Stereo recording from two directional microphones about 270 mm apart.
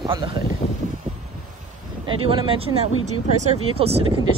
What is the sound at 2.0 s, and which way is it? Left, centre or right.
Speech, centre.